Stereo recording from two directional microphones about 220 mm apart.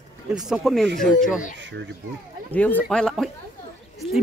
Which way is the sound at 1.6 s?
55° right (ahead or behind).